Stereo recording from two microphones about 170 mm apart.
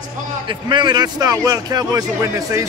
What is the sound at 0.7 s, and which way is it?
A man's voice, 25° right (ahead or behind).